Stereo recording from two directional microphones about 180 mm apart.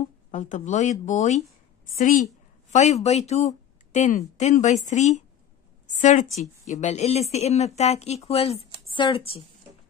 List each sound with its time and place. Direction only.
0.3 s a woman's voice: 45° left (ahead or behind)